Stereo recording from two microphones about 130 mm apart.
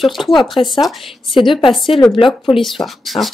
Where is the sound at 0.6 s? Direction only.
50° left (ahead or behind).